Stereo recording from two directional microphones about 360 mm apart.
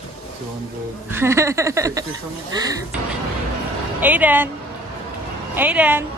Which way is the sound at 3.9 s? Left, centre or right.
Centre.